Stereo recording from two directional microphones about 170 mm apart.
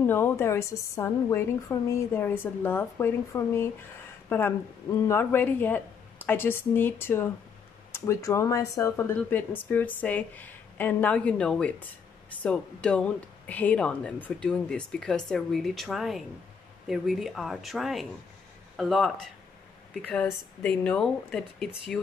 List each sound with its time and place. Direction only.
0.0 s speech: 15° left (ahead or behind)